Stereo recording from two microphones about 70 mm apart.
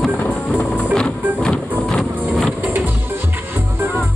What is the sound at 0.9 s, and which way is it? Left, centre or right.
Music, centre.